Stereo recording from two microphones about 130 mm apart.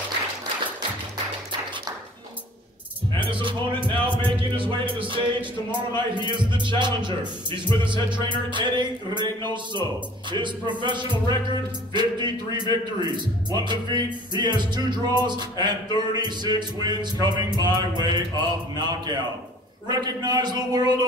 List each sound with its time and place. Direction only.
3.2 s music: 40° right (ahead or behind)
5.0 s speech: 40° right (ahead or behind)